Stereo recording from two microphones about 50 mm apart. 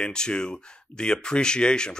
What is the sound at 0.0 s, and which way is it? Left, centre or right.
Speech, centre.